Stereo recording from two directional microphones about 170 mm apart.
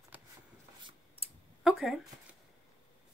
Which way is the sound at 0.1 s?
10° right (ahead or behind).